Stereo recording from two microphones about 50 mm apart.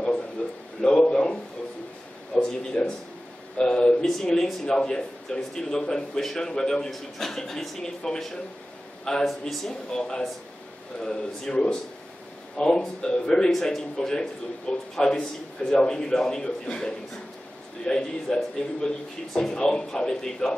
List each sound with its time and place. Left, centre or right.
0.4 s a sound: left
3.5 s a man's voice: centre
13.5 s a man's voice: centre